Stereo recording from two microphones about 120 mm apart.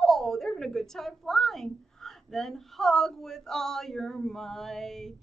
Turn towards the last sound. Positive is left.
turn(degrees=5)  # may be behind; listen again after turning